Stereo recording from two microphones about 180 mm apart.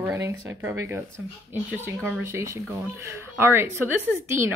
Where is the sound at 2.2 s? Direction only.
15° right (ahead or behind).